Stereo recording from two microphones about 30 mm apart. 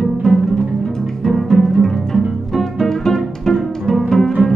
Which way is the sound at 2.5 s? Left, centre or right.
Centre.